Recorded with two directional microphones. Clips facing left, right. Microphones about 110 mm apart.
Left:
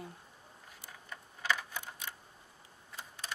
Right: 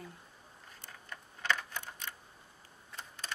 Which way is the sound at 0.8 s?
10° left (ahead or behind).